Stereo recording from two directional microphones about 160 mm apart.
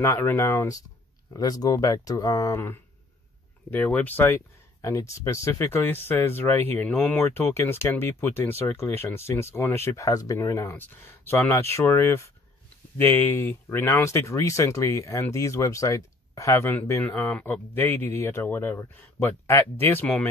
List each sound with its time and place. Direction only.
0.0 s speech: 15° left (ahead or behind)